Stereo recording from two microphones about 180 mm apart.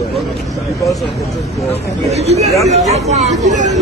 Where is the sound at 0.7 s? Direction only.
20° left (ahead or behind).